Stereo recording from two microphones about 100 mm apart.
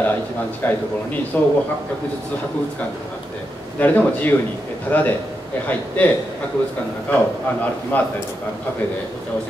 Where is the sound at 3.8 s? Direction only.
15° left (ahead or behind).